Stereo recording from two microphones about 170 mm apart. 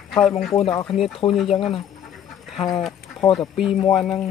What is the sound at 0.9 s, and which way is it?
Speech, centre (ahead or behind).